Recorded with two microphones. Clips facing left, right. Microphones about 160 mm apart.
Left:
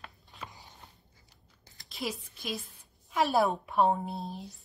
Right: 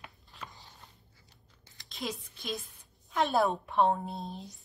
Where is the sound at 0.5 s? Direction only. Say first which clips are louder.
Left 2 dB; 15° left (ahead or behind).